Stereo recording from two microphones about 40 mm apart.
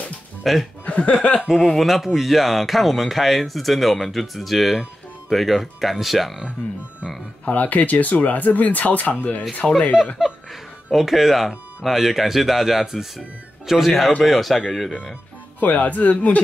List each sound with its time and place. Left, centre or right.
0.4 s speech: centre
0.8 s a sound: left
1.8 s speech: centre
7.4 s speech: left
9.6 s speech: centre
10.2 s a sound: centre
10.9 s speech: centre
15.6 s speech: left